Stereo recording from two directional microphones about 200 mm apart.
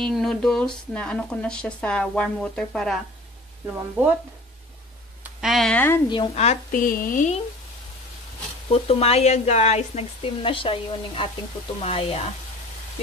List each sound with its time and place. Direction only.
0.0 s speech: centre (ahead or behind)
5.2 s speech: centre (ahead or behind)
6.0 s speech: 25° left (ahead or behind); by 7.4 s 40° left (ahead or behind)
8.6 s speech: 30° left (ahead or behind)